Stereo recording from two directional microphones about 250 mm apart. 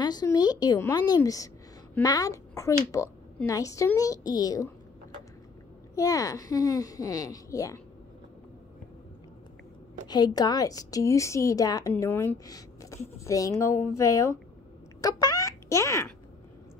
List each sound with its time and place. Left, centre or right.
0.0 s a woman's voice: centre
5.9 s a woman's voice: centre
10.0 s a woman's voice: centre